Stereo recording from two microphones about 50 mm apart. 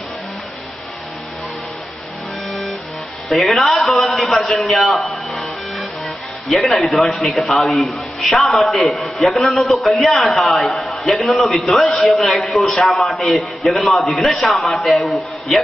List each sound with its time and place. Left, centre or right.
3.3 s a man's voice: centre
6.5 s a man's voice: centre